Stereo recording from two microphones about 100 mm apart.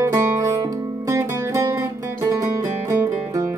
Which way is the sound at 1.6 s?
35° right (ahead or behind).